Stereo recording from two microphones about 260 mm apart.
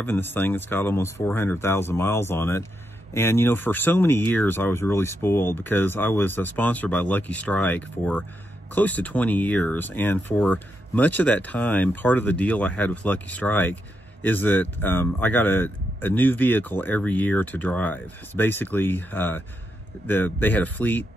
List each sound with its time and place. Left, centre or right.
0.0 s speech: centre